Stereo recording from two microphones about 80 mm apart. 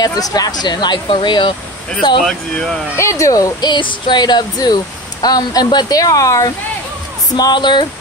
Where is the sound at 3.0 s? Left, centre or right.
Left.